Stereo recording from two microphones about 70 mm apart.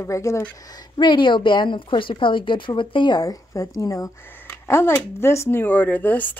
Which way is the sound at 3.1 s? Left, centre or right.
Left.